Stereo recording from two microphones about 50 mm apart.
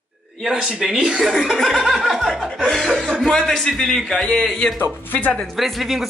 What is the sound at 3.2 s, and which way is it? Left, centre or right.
Speech, centre.